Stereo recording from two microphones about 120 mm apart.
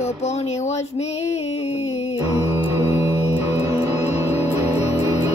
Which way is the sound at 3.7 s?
20° right (ahead or behind).